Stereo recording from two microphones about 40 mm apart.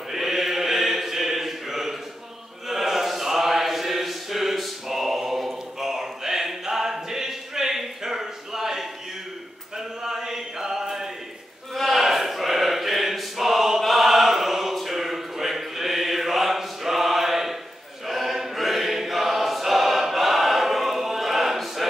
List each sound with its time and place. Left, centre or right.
0.1 s chant: centre
11.7 s a sound: centre
14.8 s mantra: centre
18.0 s choir: centre